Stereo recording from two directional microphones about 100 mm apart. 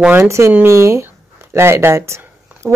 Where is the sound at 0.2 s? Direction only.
30° right (ahead or behind).